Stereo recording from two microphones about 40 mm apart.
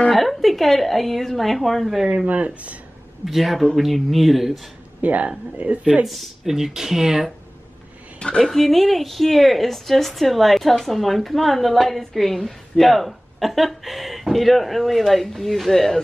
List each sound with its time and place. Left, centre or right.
0.1 s speech: centre
2.2 s speech: right
3.3 s speech: centre
5.0 s speech: right
6.0 s speech: centre
8.4 s speech: centre